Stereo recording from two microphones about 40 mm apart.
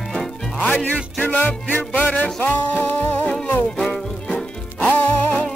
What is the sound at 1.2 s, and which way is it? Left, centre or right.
Music, left.